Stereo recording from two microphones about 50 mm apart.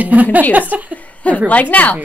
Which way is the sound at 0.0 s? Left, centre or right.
Right.